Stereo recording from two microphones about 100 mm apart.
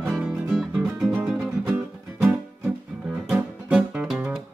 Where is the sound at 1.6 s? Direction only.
15° right (ahead or behind).